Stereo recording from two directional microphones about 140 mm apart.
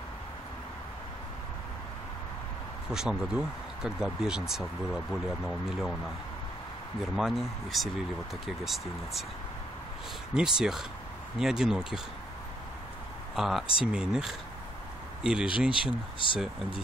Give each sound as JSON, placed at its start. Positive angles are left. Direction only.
{"t": 2.9, "sound": "speech", "side_deg": -5}
{"t": 7.2, "sound": "speech", "side_deg": 0}
{"t": 10.3, "sound": "speech", "side_deg": -5}
{"t": 13.4, "sound": "speech", "side_deg": 0}
{"t": 15.7, "sound": "speech", "side_deg": 40}